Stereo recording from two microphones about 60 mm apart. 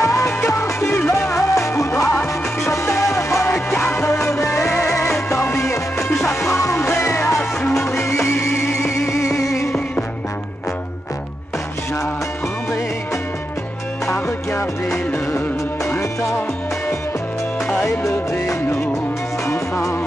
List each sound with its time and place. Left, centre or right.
0.0 s music: left
0.5 s music: left
1.5 s music: left
4.3 s music of bollywood: left
4.6 s music: left
5.3 s music: left
7.6 s music: centre
7.9 s music: left
19.4 s music: left